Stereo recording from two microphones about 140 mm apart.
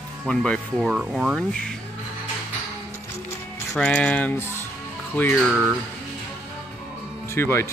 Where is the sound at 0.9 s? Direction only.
5° right (ahead or behind).